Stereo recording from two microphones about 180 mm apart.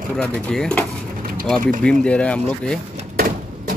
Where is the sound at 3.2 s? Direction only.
50° right (ahead or behind).